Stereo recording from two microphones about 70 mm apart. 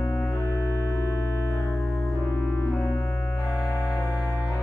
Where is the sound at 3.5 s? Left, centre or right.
Left.